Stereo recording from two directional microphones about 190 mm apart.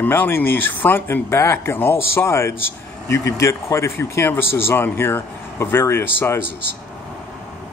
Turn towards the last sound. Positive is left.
turn(degrees=10)  # may be behind; listen again after turning